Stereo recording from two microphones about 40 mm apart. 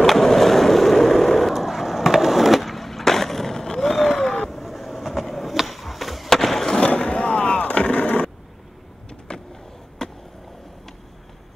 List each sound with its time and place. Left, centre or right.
0.0 s skateboard: centre
1.5 s skateboard: centre
4.5 s a sound: centre
6.8 s skateboard: left
9.3 s vehicle: left
10.0 s skateboard: centre